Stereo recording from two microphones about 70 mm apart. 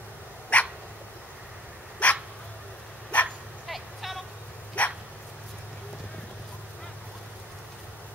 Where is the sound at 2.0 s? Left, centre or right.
Centre.